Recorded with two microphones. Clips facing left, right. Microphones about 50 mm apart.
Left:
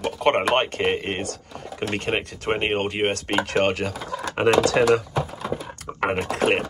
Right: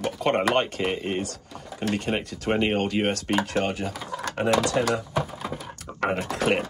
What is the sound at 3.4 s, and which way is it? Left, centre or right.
Speech, left.